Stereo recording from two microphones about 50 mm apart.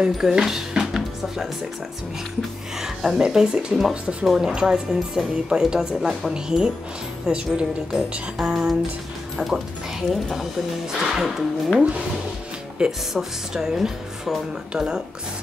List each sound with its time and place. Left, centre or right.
0.2 s music: centre
3.2 s speech: centre
12.8 s speech: centre